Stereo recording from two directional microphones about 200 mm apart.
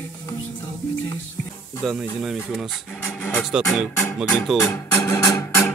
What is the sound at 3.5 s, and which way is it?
Speech, centre (ahead or behind).